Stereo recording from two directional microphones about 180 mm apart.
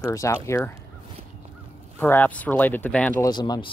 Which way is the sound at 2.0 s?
10° left (ahead or behind).